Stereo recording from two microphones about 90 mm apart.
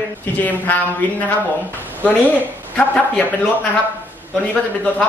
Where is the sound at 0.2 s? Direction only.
20° left (ahead or behind).